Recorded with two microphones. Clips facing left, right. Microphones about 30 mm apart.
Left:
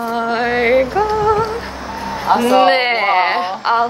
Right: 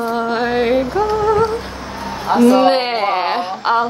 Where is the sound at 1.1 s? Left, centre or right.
Centre.